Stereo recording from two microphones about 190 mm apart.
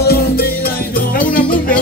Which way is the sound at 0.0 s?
55° left (ahead or behind).